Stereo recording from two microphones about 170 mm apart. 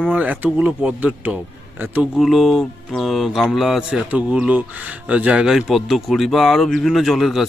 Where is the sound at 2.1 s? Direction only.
Centre (ahead or behind).